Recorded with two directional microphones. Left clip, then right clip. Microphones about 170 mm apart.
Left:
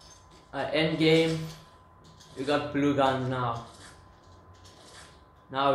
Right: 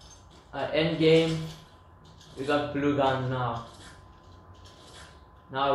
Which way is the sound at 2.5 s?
45° left (ahead or behind).